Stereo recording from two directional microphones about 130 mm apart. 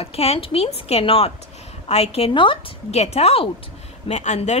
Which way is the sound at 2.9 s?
55° left (ahead or behind).